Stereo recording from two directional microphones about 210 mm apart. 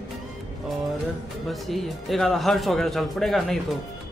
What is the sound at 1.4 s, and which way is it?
A man's voice, centre (ahead or behind).